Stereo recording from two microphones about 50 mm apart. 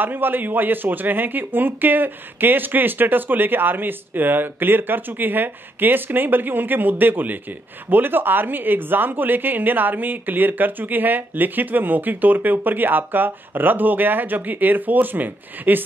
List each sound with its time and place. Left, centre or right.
0.0 s speech: right